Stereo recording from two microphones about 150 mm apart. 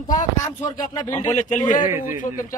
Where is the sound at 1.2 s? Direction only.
55° left (ahead or behind).